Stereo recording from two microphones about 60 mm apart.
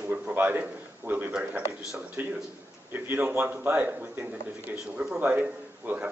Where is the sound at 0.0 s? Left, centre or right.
Right.